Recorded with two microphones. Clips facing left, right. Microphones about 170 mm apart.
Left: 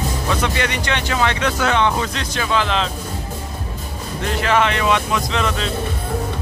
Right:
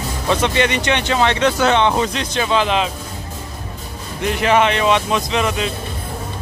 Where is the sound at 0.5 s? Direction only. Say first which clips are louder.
Right 4 dB; 20° right (ahead or behind).